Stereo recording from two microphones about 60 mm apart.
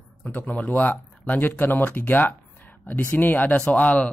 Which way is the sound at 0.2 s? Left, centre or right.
Left.